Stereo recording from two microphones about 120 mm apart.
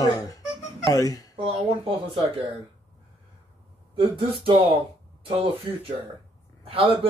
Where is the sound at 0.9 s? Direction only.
30° left (ahead or behind).